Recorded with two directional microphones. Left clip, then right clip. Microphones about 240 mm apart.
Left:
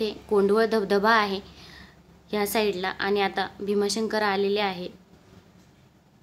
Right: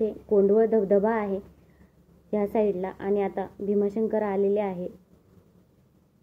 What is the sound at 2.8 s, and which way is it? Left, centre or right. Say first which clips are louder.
A woman's voice: left 2 dB; left.